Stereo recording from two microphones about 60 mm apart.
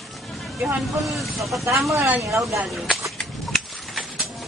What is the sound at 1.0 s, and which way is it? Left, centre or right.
Speech, centre.